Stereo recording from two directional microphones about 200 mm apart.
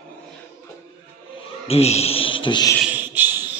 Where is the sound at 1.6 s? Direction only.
30° left (ahead or behind).